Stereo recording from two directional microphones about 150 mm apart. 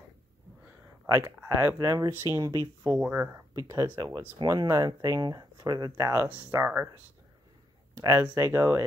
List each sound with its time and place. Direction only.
1.0 s speech: 20° right (ahead or behind)
8.0 s speech: 20° right (ahead or behind)